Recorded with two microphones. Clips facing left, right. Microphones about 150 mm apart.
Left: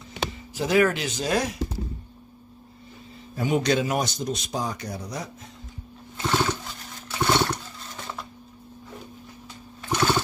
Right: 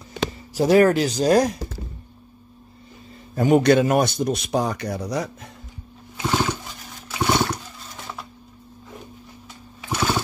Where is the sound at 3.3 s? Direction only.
50° right (ahead or behind); by 5.4 s 75° right (ahead or behind).